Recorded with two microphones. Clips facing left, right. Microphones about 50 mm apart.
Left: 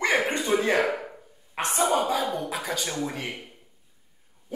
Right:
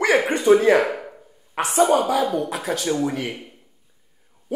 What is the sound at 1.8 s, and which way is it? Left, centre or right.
Speech, right.